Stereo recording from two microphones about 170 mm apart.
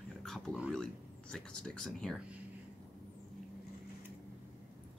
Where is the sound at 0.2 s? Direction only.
Centre (ahead or behind).